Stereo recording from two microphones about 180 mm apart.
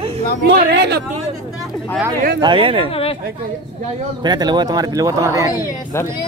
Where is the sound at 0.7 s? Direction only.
65° right (ahead or behind).